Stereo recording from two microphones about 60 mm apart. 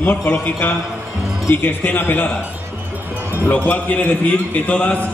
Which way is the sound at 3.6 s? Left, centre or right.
Left.